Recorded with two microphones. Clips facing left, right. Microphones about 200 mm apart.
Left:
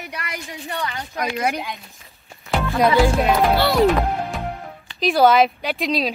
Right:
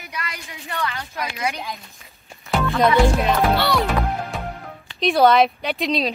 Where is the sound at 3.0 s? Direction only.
Centre (ahead or behind).